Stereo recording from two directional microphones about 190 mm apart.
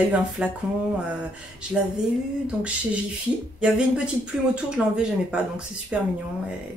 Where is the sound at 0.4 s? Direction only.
5° right (ahead or behind).